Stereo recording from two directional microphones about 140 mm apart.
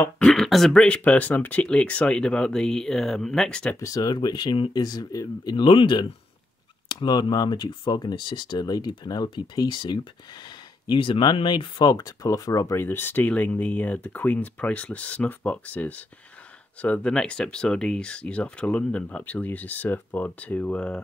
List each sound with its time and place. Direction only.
0.2 s speech: centre (ahead or behind)
3.8 s speech: 25° left (ahead or behind); by 21.0 s 10° left (ahead or behind)